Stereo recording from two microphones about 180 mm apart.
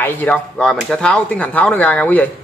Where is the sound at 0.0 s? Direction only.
10° left (ahead or behind).